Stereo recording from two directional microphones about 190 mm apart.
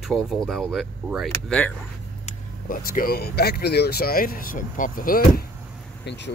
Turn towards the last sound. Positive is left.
turn(degrees=65)  # may be behind; listen again after turning